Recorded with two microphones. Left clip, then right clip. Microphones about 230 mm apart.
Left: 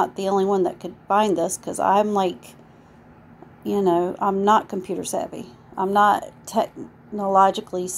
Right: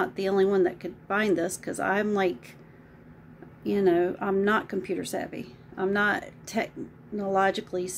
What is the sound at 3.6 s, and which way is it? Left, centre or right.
A woman's voice, centre.